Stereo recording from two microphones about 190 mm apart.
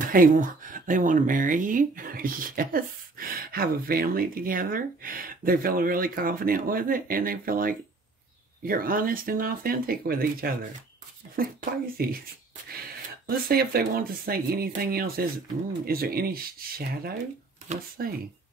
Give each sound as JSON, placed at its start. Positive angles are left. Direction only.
{"t": 0.1, "sound": "speech", "side_deg": -45}
{"t": 13.3, "sound": "speech", "side_deg": -55}